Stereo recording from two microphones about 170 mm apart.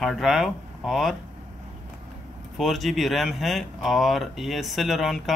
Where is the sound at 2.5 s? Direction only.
Centre (ahead or behind).